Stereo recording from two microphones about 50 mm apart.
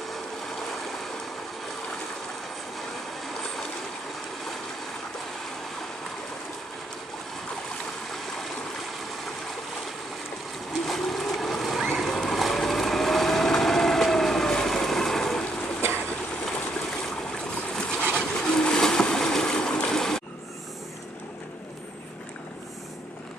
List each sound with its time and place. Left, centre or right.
10.9 s a sound: centre
12.0 s vehicle: centre
17.7 s boat: centre